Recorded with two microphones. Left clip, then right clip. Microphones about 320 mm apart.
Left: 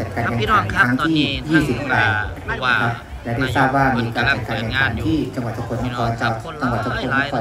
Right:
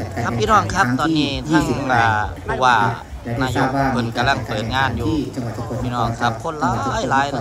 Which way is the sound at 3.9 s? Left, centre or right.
Centre.